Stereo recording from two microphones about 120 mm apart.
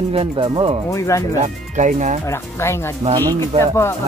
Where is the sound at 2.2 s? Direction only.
20° left (ahead or behind).